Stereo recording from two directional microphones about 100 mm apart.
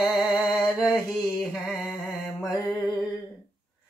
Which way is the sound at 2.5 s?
5° right (ahead or behind).